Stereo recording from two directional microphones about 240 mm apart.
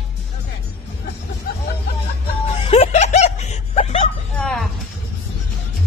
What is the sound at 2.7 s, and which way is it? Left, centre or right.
Snicker, left.